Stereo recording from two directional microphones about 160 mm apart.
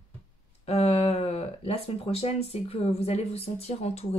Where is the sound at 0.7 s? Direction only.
40° left (ahead or behind).